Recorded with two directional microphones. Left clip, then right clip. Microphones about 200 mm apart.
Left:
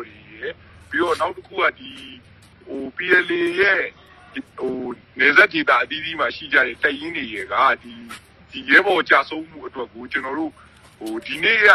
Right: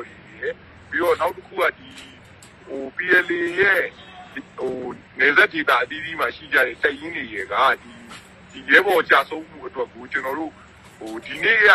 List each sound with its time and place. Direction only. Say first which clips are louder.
0.4 s speech: right 3 dB; 35° left (ahead or behind)
3.0 s speech: left 1 dB; 35° left (ahead or behind)